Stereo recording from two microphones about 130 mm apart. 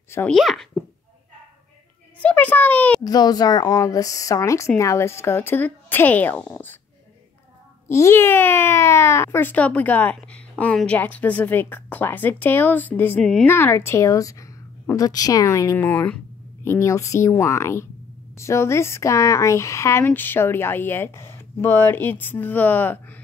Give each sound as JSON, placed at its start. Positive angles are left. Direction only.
{"t": 0.3, "sound": "speech", "side_deg": 0}
{"t": 2.1, "sound": "a child's voice", "side_deg": 10}
{"t": 3.0, "sound": "speech", "side_deg": 30}
{"t": 7.9, "sound": "a woman's voice", "side_deg": 20}
{"t": 15.8, "sound": "speech", "side_deg": 10}